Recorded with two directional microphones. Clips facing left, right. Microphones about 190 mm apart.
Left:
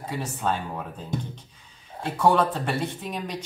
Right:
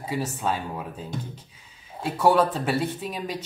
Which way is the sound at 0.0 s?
5° right (ahead or behind).